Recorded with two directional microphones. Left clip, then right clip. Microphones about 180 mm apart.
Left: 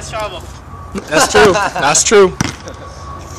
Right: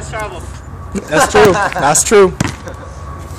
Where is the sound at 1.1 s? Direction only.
30° left (ahead or behind).